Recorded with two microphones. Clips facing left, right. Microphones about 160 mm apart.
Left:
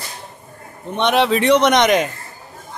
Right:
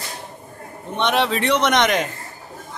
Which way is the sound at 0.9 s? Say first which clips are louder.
Left 4 dB; 15° left (ahead or behind).